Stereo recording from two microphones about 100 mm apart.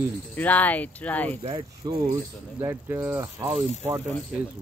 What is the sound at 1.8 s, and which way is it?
Speech, 40° right (ahead or behind).